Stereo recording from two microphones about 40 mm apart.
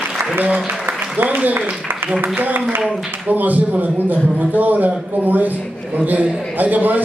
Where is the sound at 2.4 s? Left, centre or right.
Right.